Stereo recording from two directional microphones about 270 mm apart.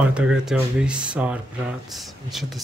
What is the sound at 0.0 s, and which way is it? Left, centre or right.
Speech, centre.